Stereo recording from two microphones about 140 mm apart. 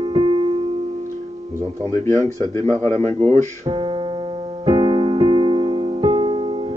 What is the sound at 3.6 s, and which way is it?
Piano, 35° right (ahead or behind).